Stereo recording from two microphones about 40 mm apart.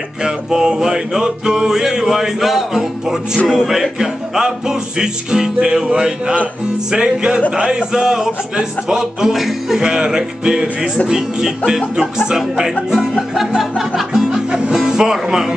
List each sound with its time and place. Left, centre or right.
0.2 s music: centre
9.3 s music: centre
9.8 s music: centre
15.2 s a man's voice: centre